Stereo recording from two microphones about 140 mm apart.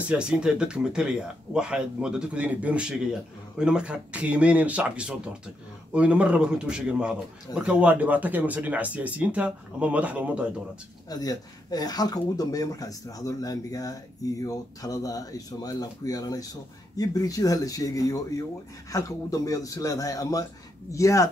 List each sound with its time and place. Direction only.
0.0 s speech: 5° right (ahead or behind)
11.1 s speech: 25° left (ahead or behind)